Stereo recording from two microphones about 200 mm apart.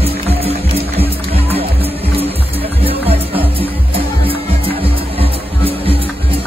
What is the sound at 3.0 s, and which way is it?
Music, 30° right (ahead or behind).